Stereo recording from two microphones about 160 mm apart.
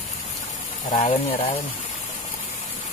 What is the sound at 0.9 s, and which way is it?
Speech, 40° left (ahead or behind).